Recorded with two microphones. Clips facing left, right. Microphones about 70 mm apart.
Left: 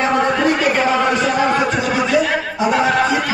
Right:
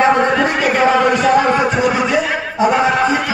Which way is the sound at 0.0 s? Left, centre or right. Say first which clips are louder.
Right 4 dB; right.